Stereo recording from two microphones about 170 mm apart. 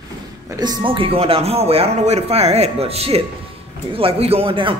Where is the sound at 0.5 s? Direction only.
25° right (ahead or behind).